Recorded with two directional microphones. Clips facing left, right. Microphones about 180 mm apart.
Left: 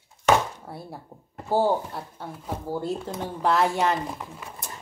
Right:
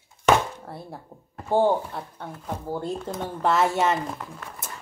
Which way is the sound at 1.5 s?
5° left (ahead or behind).